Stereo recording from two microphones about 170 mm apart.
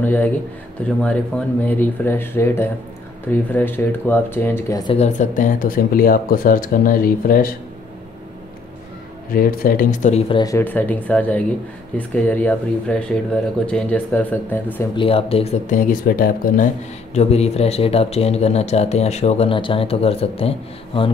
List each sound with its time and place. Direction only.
0.0 s speech: 10° left (ahead or behind)
4.9 s speech: 45° left (ahead or behind)
9.3 s speech: 55° left (ahead or behind); by 10.4 s 35° left (ahead or behind)
10.4 s speech: 15° left (ahead or behind)
15.0 s speech: 35° left (ahead or behind); by 16.6 s 55° left (ahead or behind)
17.1 s speech: 40° left (ahead or behind)